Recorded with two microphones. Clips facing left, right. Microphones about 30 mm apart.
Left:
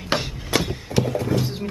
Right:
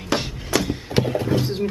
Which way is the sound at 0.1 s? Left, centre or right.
Centre.